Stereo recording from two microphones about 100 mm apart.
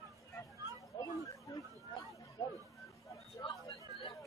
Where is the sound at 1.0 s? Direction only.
40° left (ahead or behind).